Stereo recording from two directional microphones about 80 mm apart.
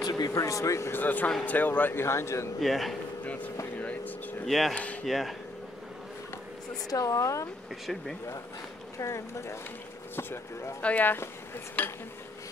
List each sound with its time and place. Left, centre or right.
0.0 s speech: left
1.0 s speech: left
2.6 s speech: centre
3.3 s speech: centre
3.8 s vehicle: centre
4.5 s speech: centre
6.9 s a woman's voice: left
7.8 s speech: centre
8.9 s speech: left
10.8 s speech: centre